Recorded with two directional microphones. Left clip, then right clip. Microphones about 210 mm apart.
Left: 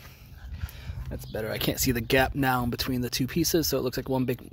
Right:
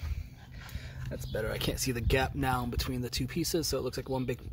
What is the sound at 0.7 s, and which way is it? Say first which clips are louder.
Speech: even; 35° left (ahead or behind).